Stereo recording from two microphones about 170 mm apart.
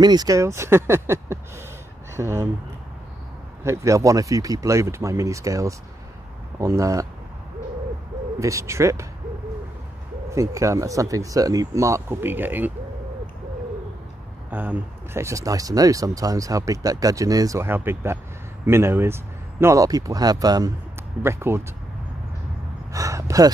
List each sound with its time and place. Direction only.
0.0 s speech: 25° right (ahead or behind)
3.6 s speech: 15° right (ahead or behind)
8.4 s speech: 20° right (ahead or behind)
10.3 s speech: 20° right (ahead or behind)
14.5 s speech: 10° right (ahead or behind)
22.9 s speech: 20° right (ahead or behind)